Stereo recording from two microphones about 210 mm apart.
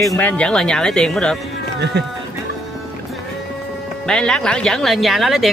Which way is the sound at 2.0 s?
50° right (ahead or behind).